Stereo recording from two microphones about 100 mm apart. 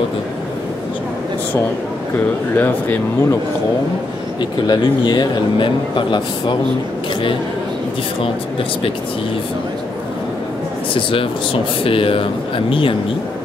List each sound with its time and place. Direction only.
2.5 s speech: 20° left (ahead or behind)
4.4 s speech: 45° left (ahead or behind)
11.0 s speech: 60° left (ahead or behind)